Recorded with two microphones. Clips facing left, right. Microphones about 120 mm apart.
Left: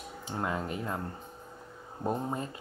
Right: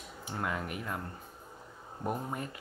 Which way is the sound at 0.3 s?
25° left (ahead or behind).